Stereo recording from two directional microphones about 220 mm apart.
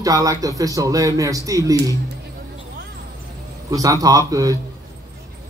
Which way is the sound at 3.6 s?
15° right (ahead or behind).